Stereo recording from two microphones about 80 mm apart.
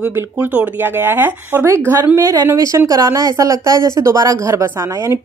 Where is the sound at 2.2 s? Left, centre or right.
Right.